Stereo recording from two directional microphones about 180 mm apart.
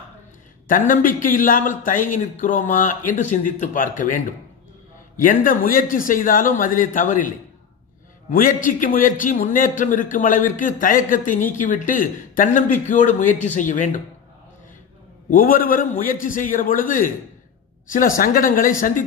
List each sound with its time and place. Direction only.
0.7 s a man's voice: 50° left (ahead or behind)
15.3 s a man's voice: 50° left (ahead or behind)